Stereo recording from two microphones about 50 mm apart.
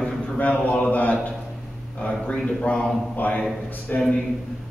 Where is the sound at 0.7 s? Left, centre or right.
Left.